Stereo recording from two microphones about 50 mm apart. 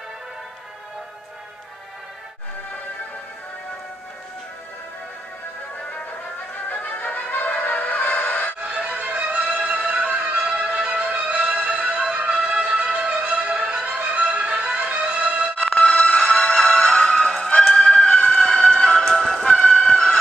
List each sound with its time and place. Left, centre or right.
6.7 s music: left
8.6 s music: right
15.5 s music: left
18.3 s music: centre
19.4 s music: centre